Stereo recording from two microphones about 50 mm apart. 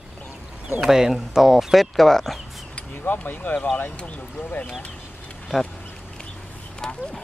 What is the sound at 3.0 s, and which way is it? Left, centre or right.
Speech, left.